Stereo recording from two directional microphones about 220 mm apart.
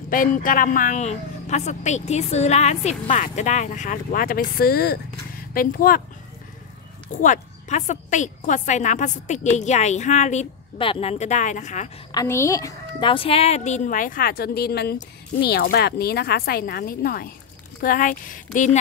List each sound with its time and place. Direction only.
0.1 s a woman's voice: 40° left (ahead or behind)
7.1 s a woman's voice: 35° left (ahead or behind)
12.1 s a woman's voice: 15° left (ahead or behind); by 18.8 s 35° left (ahead or behind)